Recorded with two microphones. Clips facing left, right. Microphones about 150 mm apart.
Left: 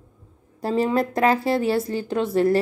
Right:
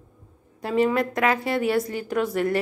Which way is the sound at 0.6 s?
35° left (ahead or behind).